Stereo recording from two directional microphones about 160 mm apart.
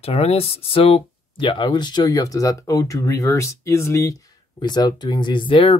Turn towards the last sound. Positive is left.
turn(degrees=30)  # may be behind; listen again after turning